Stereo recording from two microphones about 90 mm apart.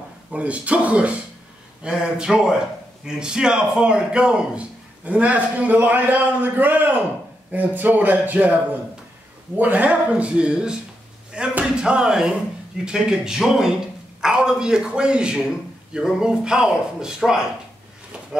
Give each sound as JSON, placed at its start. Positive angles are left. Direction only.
{"t": 0.3, "sound": "a man's voice", "side_deg": -15}
{"t": 9.6, "sound": "a man's voice", "side_deg": -15}